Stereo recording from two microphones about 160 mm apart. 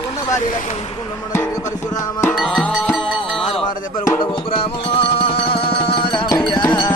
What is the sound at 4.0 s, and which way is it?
Music, 25° left (ahead or behind).